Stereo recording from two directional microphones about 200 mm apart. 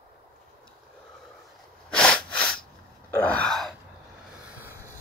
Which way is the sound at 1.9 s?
5° left (ahead or behind).